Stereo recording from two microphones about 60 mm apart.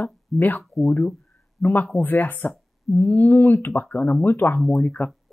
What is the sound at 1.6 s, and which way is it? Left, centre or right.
Speech, left.